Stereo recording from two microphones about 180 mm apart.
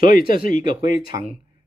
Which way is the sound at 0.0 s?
50° left (ahead or behind).